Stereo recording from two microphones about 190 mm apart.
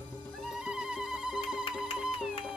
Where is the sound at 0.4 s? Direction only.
5° right (ahead or behind).